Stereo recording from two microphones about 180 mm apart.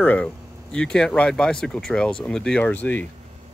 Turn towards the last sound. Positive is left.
turn(degrees=10)  # may be behind; listen again after turning